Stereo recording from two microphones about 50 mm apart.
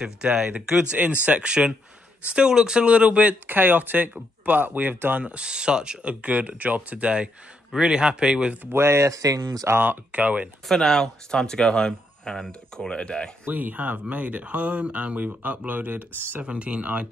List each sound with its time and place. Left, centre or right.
0.0 s speech: centre
3.4 s speech: right
5.2 s speech: right
6.2 s speech: right
8.6 s speech: right
9.8 s speech: right
10.7 s speech: centre
13.5 s speech: right
16.2 s speech: right
16.4 s speech: right